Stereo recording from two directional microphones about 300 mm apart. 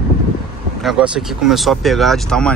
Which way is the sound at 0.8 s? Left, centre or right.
Centre.